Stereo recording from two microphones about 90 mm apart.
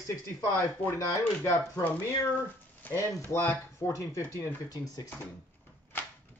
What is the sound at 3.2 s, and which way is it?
A man's voice, 30° left (ahead or behind).